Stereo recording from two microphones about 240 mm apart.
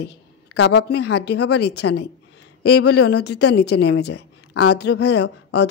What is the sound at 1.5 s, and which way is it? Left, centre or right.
Speech, left.